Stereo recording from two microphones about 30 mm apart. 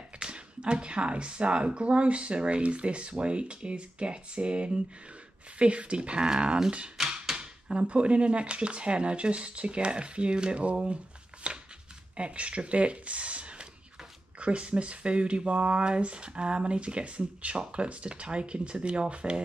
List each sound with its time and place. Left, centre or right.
0.3 s speech: right
7.0 s a sound: right
7.7 s speech: right
10.6 s speech: right
11.4 s chopping: right
12.2 s speech: right